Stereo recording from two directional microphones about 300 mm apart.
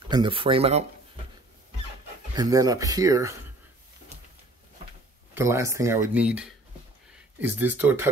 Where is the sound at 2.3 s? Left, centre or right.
Centre.